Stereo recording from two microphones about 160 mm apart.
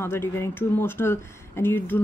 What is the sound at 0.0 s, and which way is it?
Speech, 15° left (ahead or behind).